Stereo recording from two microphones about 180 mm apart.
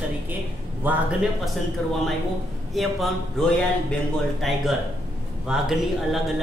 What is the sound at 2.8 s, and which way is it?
Speech, centre (ahead or behind).